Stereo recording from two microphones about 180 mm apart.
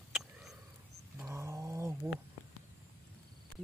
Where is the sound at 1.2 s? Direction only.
15° right (ahead or behind).